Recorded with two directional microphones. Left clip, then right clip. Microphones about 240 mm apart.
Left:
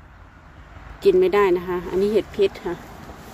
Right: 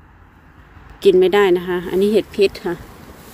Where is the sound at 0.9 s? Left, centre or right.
Right.